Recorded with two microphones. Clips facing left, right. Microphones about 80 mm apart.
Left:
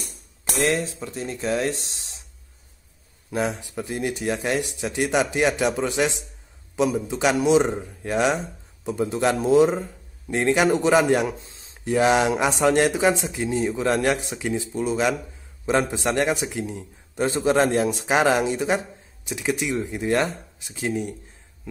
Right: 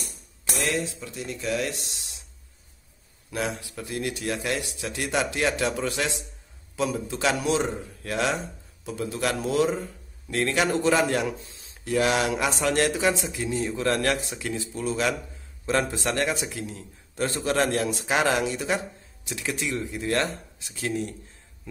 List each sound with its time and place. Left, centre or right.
0.6 s speech: left
3.3 s a man's voice: left